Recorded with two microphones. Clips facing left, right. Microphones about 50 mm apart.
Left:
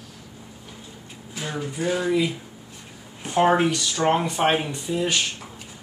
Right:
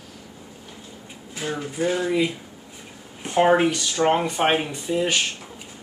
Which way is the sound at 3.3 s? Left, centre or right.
Centre.